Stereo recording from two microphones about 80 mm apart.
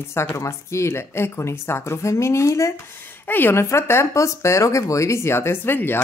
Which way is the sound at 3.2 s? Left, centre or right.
Left.